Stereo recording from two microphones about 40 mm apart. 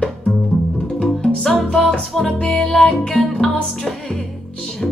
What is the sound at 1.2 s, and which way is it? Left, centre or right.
Music, centre.